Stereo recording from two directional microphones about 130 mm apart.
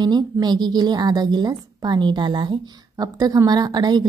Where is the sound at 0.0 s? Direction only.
35° right (ahead or behind).